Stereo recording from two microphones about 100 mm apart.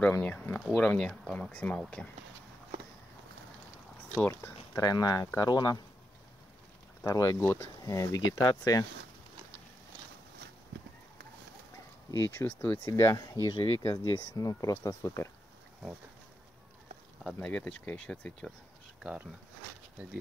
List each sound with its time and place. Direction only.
0.0 s speech: 15° left (ahead or behind)
4.2 s speech: 20° left (ahead or behind)
4.7 s speech: 40° left (ahead or behind)
7.1 s speech: 30° left (ahead or behind)
12.1 s speech: 30° left (ahead or behind)
17.2 s speech: 5° left (ahead or behind)